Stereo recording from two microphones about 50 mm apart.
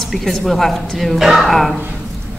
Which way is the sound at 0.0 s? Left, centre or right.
Centre.